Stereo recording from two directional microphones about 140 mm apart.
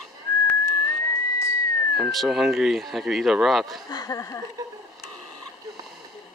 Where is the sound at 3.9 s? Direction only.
25° left (ahead or behind).